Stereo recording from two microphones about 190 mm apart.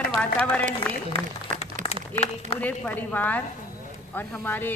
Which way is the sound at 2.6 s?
10° left (ahead or behind).